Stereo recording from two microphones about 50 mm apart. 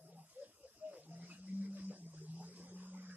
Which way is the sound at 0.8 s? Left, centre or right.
Right.